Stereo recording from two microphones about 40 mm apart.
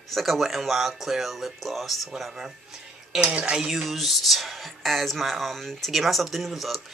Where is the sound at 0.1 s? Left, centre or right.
Centre.